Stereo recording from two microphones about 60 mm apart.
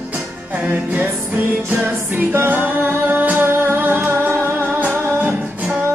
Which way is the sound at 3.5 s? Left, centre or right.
Right.